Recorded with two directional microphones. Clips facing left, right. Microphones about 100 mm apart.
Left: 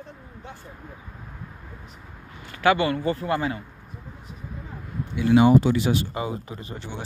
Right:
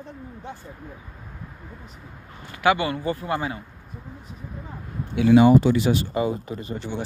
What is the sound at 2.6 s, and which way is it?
Speech, 15° right (ahead or behind).